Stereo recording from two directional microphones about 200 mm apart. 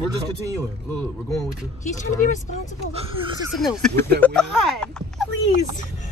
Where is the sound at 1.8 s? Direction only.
40° left (ahead or behind).